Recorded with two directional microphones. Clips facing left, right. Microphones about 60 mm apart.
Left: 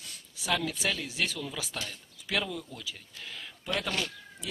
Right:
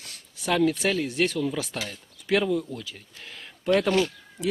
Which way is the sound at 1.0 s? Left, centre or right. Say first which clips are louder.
Right 8 dB; right.